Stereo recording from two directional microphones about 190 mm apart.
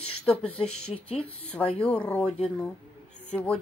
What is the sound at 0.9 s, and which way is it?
Speech, 30° left (ahead or behind).